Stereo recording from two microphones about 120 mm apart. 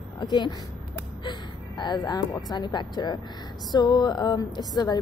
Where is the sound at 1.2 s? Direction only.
40° left (ahead or behind).